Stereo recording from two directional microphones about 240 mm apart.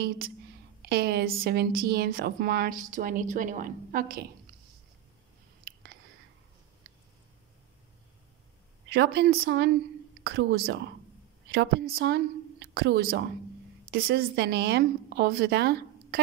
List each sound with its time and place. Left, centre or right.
0.8 s speech: right
8.8 s a woman's voice: right